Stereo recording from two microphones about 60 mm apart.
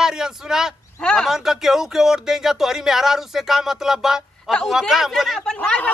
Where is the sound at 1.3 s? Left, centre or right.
Centre.